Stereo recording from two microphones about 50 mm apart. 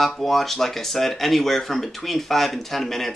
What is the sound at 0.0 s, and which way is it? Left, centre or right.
Speech, centre.